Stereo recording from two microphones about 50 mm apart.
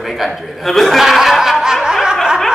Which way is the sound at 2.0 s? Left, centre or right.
Centre.